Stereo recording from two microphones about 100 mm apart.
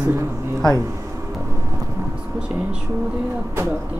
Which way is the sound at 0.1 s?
25° right (ahead or behind).